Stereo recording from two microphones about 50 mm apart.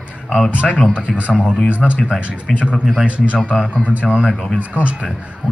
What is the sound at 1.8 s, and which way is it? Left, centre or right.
Speech, centre.